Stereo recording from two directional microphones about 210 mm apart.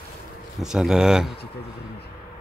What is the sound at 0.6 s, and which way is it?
Speech, centre (ahead or behind).